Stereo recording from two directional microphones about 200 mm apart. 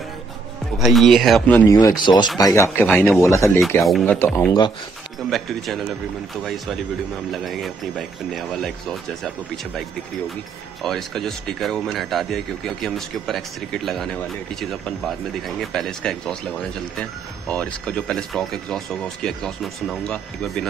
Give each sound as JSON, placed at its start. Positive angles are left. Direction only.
{"t": 0.7, "sound": "speech", "side_deg": 0}
{"t": 4.5, "sound": "speech", "side_deg": 20}
{"t": 5.3, "sound": "speech", "side_deg": 0}
{"t": 10.8, "sound": "speech", "side_deg": 0}